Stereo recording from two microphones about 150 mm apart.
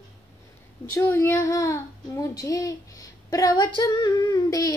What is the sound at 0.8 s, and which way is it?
Child singing, 20° left (ahead or behind).